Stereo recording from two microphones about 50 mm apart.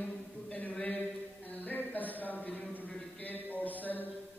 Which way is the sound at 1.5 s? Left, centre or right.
Left.